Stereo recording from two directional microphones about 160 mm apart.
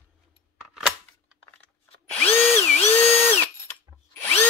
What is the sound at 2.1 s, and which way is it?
Drill, 15° left (ahead or behind).